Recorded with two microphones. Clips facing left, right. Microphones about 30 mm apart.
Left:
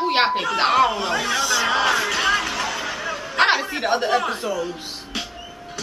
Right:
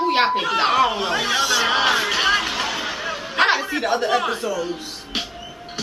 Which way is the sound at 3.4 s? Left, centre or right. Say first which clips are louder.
Even; centre.